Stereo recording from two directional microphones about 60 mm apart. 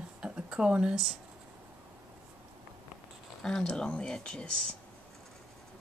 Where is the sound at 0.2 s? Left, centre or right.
Centre.